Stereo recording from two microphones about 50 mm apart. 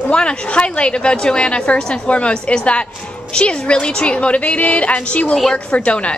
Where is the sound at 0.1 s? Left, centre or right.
Left.